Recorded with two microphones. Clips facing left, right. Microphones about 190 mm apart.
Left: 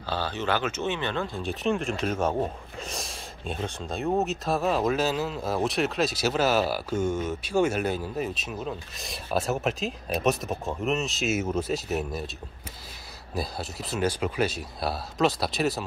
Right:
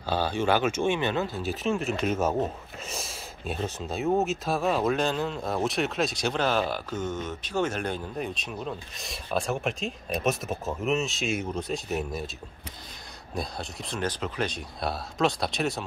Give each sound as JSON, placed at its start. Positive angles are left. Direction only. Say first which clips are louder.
{"t": 0.0, "sound": "speech", "louder": "right 3 dB", "side_deg": -15}
{"t": 13.3, "sound": "speech", "louder": "left 2 dB", "side_deg": 5}